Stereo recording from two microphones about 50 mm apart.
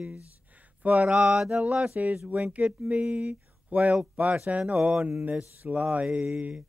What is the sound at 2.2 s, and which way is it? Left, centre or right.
Mantra, right.